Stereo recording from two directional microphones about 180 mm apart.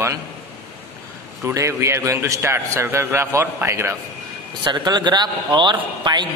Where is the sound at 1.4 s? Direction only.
15° right (ahead or behind).